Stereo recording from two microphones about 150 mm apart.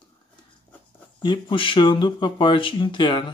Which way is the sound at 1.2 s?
30° left (ahead or behind).